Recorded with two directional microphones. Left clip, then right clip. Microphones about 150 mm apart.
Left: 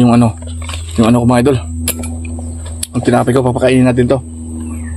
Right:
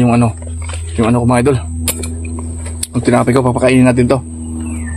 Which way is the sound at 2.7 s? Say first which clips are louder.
Even; 10° left (ahead or behind).